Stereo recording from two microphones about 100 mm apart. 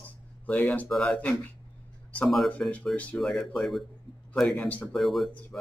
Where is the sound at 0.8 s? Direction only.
5° left (ahead or behind).